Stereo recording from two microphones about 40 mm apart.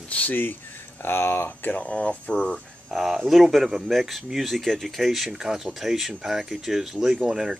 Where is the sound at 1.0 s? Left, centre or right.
Left.